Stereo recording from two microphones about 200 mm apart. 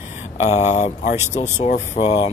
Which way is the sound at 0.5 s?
35° left (ahead or behind).